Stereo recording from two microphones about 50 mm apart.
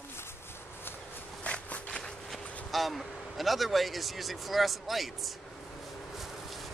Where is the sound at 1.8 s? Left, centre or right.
Centre.